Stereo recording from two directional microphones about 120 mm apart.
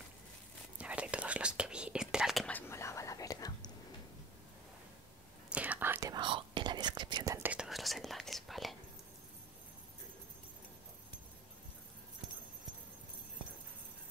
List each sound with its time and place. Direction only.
0.7 s whispering: 10° right (ahead or behind)
2.7 s whispering: 25° left (ahead or behind)
5.5 s whispering: 10° right (ahead or behind)
6.0 s whispering: 40° right (ahead or behind)
7.4 s whispering: 5° right (ahead or behind)